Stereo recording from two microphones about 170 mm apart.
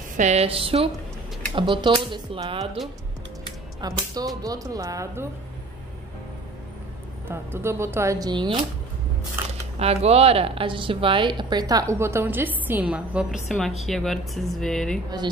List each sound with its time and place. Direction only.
0.2 s a woman's voice: 40° right (ahead or behind)
3.8 s speech: 20° right (ahead or behind)
7.2 s a woman's voice: 15° right (ahead or behind)
9.8 s a woman's voice: 35° right (ahead or behind); by 15.0 s 5° left (ahead or behind)